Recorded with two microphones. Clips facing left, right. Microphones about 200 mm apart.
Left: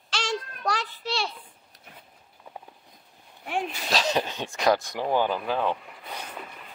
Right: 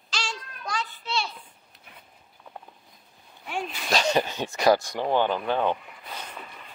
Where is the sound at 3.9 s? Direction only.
Centre (ahead or behind).